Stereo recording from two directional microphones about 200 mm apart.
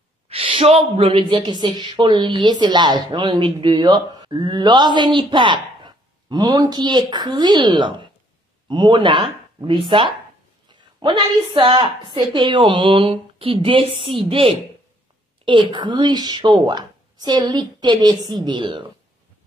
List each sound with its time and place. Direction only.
0.3 s a woman's voice: 25° right (ahead or behind)